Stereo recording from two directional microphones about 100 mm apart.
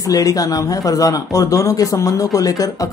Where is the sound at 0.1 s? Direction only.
35° left (ahead or behind).